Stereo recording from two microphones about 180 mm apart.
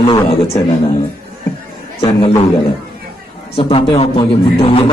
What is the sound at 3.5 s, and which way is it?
Speech, 35° left (ahead or behind).